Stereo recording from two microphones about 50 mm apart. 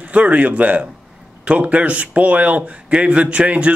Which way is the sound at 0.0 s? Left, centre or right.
Right.